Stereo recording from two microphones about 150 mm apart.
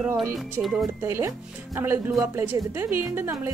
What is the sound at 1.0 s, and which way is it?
A woman's voice, 15° right (ahead or behind).